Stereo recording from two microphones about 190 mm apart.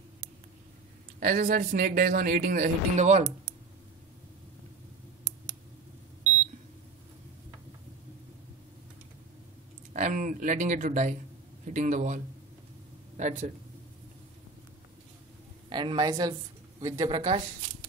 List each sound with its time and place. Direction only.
1.2 s speech: 45° right (ahead or behind)
9.9 s speech: 40° right (ahead or behind)
13.2 s speech: 35° right (ahead or behind)
15.7 s a woman's voice: 25° right (ahead or behind)